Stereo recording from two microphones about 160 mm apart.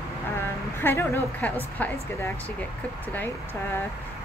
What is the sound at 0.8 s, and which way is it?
A woman's voice, 15° left (ahead or behind).